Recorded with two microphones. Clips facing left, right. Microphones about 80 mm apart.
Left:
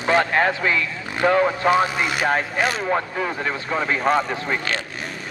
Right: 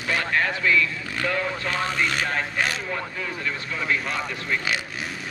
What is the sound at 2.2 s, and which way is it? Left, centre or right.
A man's voice, left.